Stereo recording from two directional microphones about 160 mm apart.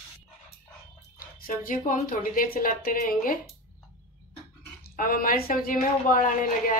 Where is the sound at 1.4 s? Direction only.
60° left (ahead or behind).